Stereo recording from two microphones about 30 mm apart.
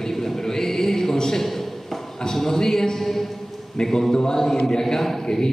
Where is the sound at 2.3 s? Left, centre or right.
Centre.